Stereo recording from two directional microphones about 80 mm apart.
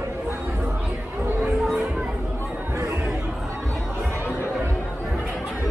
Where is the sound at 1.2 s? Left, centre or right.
Right.